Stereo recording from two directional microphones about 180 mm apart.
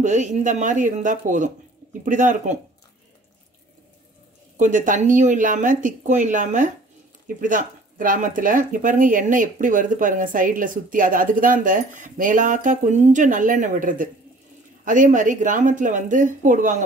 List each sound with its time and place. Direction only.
0.0 s speech: 40° right (ahead or behind)
4.6 s speech: 45° right (ahead or behind)